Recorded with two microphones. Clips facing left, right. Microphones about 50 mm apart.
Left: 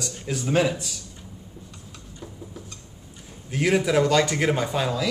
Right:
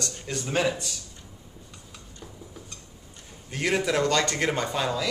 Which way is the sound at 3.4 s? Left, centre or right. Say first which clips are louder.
Left 4 dB; centre.